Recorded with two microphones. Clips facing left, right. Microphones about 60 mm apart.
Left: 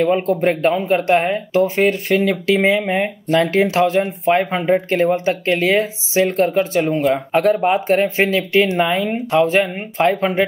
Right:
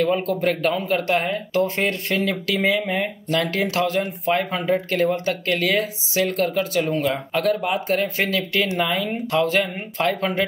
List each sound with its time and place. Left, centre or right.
0.0 s speech: left